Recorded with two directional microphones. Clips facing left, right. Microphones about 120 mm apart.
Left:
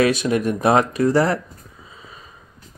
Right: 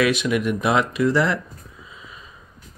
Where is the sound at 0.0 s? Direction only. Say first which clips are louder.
Left 2 dB; 35° left (ahead or behind).